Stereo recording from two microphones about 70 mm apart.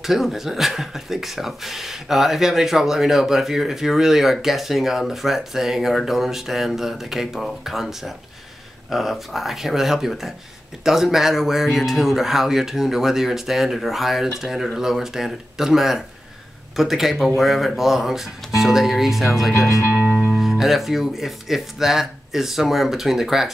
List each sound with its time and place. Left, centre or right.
0.0 s speech: centre
19.9 s music: right
20.3 s speech: centre